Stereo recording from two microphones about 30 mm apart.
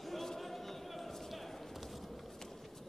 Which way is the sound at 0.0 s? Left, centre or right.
Centre.